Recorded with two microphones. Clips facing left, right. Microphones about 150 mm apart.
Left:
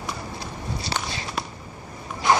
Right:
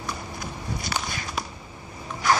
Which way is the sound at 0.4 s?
30° left (ahead or behind).